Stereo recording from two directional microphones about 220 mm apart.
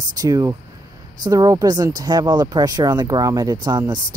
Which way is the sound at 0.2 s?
15° right (ahead or behind).